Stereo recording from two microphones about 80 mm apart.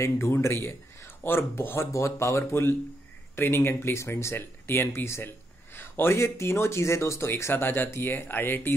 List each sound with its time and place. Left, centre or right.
0.0 s a man's voice: left